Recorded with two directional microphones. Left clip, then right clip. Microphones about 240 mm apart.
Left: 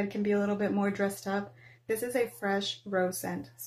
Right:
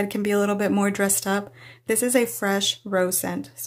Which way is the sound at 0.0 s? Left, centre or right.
Right.